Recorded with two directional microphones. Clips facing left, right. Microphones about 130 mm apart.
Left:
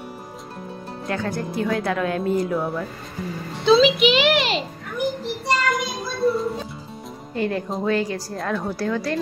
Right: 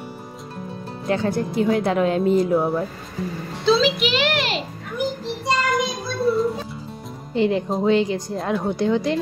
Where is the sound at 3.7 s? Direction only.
Centre (ahead or behind).